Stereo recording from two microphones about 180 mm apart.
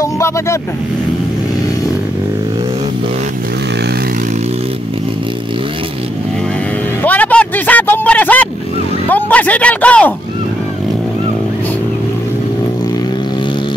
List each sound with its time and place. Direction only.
0.0 s speech: 15° left (ahead or behind)
7.0 s music: 10° left (ahead or behind)
9.1 s speech: 10° left (ahead or behind)